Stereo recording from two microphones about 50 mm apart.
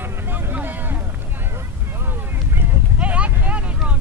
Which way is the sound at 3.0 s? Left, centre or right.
Right.